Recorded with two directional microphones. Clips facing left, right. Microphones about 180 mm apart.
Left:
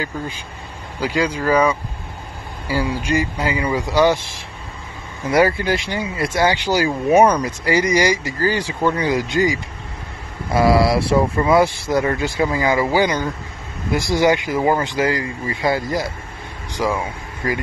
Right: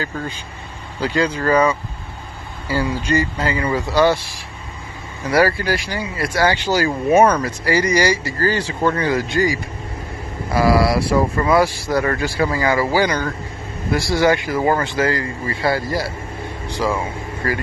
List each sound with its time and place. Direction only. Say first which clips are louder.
0.9 s speech: right 1 dB; 10° left (ahead or behind)
16.6 s vehicle: even; 15° left (ahead or behind)
17.4 s speech: even; 15° left (ahead or behind)